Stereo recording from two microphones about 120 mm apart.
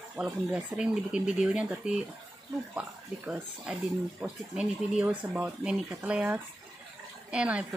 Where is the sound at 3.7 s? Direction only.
5° right (ahead or behind).